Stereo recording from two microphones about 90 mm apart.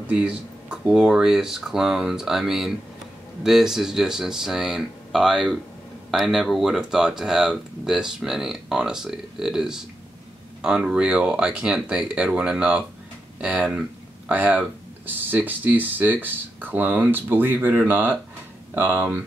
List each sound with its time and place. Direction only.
0.1 s speech: 10° right (ahead or behind)
13.4 s a sound: 15° right (ahead or behind)
14.3 s speech: 20° right (ahead or behind)